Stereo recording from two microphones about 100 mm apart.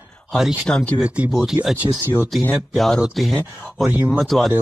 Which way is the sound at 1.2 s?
Centre (ahead or behind).